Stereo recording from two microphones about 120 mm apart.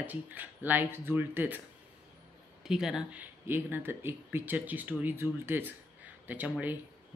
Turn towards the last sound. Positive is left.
turn(degrees=-10)  # may be behind; listen again after turning